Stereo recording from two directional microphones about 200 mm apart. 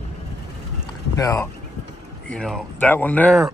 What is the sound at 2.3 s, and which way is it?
Speech, 5° left (ahead or behind).